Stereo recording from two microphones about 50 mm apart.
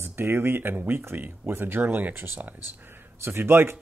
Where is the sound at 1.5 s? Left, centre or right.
Right.